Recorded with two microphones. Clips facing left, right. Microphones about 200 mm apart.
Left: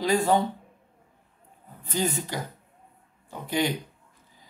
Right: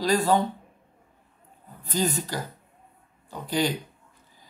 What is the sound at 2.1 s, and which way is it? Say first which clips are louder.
Speech: right 1 dB; 20° left (ahead or behind).